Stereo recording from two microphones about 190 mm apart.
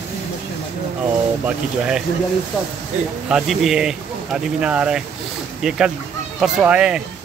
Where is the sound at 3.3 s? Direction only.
Centre (ahead or behind).